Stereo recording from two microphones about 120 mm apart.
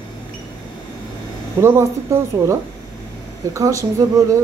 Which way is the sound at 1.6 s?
20° right (ahead or behind).